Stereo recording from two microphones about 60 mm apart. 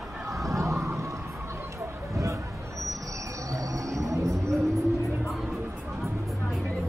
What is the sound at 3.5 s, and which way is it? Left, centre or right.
Music, right.